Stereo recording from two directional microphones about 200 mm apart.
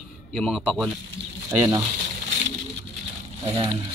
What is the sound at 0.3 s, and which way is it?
Speech, centre (ahead or behind).